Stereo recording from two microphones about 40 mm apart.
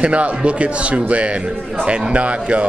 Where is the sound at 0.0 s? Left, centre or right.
Right.